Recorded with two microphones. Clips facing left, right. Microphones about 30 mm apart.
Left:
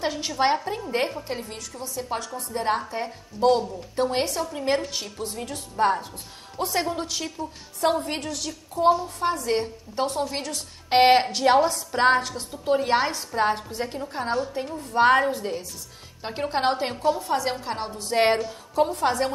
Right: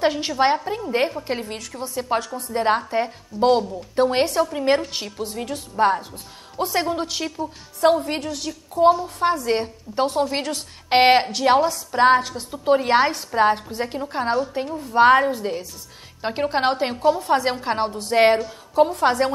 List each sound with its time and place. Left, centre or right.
0.0 s a woman's voice: right
0.4 s a woman's voice: centre
1.2 s a woman's voice: right
2.1 s a woman's voice: centre
5.1 s a woman's voice: centre
11.6 s a woman's voice: centre; by 14.3 s right
14.7 s a woman's voice: centre
17.3 s a woman's voice: right
18.0 s a woman's voice: centre
19.0 s a woman's voice: right